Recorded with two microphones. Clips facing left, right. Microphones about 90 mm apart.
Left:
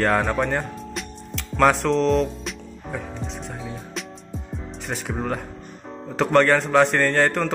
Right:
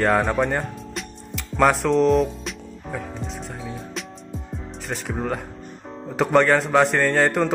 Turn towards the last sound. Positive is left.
turn(degrees=-5)  # may be behind; listen again after turning